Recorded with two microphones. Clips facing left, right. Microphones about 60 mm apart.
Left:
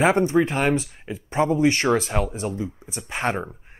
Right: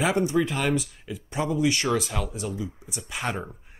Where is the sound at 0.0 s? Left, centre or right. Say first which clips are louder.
Left 5 dB; left.